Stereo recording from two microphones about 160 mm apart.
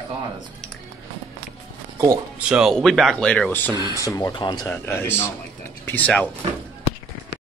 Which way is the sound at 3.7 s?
20° left (ahead or behind).